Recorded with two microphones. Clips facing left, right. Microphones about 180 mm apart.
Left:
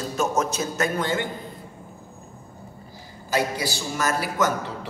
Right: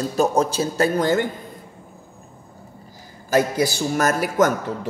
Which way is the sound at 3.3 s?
45° right (ahead or behind).